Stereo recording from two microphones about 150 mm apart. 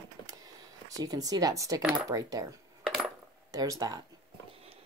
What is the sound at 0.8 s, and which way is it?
Speech, 25° right (ahead or behind).